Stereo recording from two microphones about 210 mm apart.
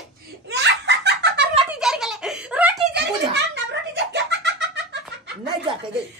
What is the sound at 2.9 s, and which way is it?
A child's voice, 55° right (ahead or behind).